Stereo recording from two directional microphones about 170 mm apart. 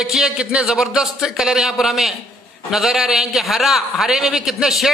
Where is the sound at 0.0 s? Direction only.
5° right (ahead or behind).